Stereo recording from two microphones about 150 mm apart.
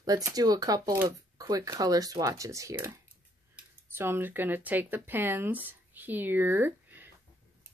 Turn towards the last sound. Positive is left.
turn(degrees=-15)  # may be behind; listen again after turning